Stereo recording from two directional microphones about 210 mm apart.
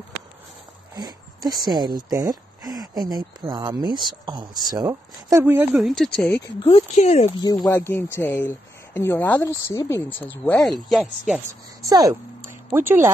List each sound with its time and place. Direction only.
0.9 s speech: 20° right (ahead or behind); by 6.5 s 5° left (ahead or behind)
6.6 s speech: 30° left (ahead or behind)
7.7 s speech: 10° left (ahead or behind)
11.9 s speech: 15° right (ahead or behind)